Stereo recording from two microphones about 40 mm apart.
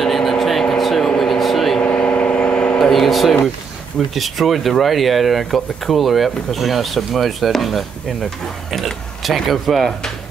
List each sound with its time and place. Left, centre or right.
0.0 s vehicle: centre
1.8 s vehicle: left
2.8 s a sound: centre
4.1 s speech: centre